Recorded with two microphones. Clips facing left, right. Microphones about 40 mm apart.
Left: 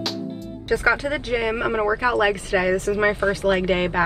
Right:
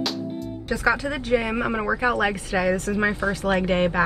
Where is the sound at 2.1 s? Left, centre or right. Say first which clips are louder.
Left 3 dB; left.